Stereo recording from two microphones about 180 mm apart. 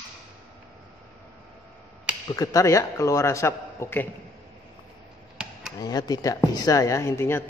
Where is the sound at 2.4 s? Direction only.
20° left (ahead or behind).